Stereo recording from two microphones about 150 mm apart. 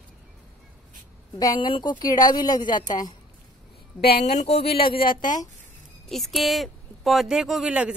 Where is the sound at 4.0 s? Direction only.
90° left.